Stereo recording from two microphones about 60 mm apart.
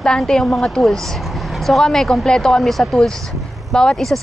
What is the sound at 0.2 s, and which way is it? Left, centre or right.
Speech, centre.